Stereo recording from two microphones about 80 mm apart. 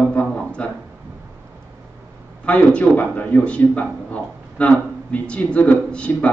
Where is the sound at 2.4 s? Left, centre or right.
Centre.